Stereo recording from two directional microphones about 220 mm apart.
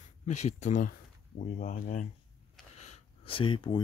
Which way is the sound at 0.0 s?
30° left (ahead or behind).